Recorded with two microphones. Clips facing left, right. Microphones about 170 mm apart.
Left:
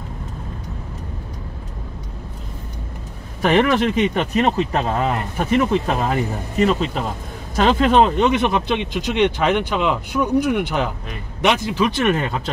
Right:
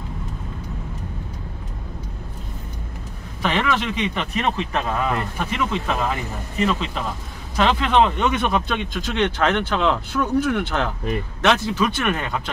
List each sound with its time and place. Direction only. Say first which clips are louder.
3.4 s speech: left 6 dB; 50° left (ahead or behind); by 5.5 s 30° left (ahead or behind)
5.5 s speech: left 8 dB; 45° left (ahead or behind)
8.3 s speech: left 3 dB; 20° left (ahead or behind)
12.0 s speech: left 5 dB; 25° left (ahead or behind)